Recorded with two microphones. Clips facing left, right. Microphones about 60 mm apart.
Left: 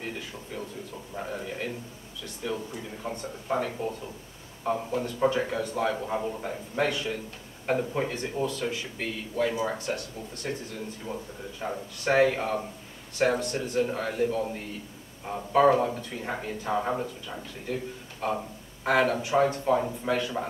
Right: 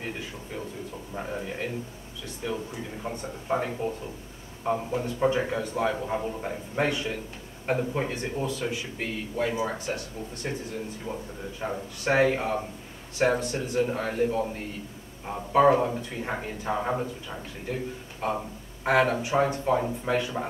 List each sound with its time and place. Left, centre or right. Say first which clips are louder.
1.1 s speech: right 1 dB; centre
2.7 s speech: right 1 dB; centre
11.1 s a man's voice: even; right
11.6 s speech: even; centre
18.2 s speech: even; centre